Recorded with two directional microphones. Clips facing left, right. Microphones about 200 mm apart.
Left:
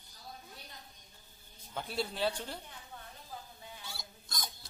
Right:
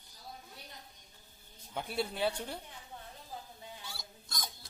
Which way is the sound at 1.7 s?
10° right (ahead or behind).